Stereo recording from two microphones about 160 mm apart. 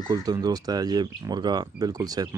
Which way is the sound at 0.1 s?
25° right (ahead or behind).